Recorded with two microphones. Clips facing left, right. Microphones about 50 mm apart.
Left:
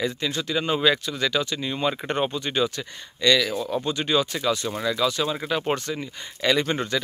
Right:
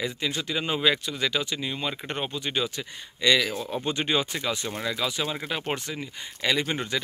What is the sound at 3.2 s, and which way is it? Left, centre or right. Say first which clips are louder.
Speech: left 2 dB; centre.